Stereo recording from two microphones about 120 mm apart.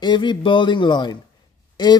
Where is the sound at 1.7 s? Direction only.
35° left (ahead or behind).